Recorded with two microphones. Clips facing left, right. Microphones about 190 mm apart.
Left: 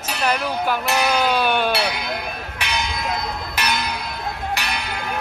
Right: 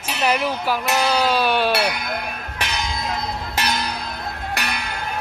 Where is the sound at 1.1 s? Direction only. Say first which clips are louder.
Right 1 dB; centre (ahead or behind).